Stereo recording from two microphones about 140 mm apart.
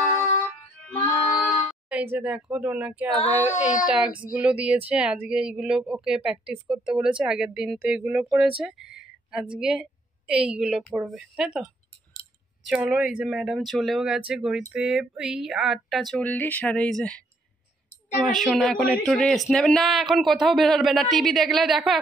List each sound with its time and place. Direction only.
1.0 s music: 20° left (ahead or behind)
1.9 s a woman's voice: 10° right (ahead or behind); by 17.2 s 10° left (ahead or behind)
18.2 s a woman's voice: centre (ahead or behind)